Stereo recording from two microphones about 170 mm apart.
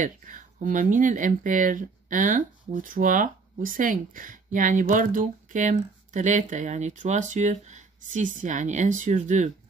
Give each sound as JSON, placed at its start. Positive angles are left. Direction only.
{"t": 0.0, "sound": "speech", "side_deg": -50}